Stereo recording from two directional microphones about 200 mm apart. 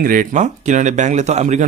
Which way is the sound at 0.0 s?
45° right (ahead or behind).